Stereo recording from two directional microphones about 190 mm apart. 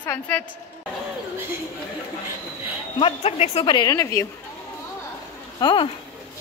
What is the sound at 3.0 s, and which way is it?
Speech, 35° left (ahead or behind).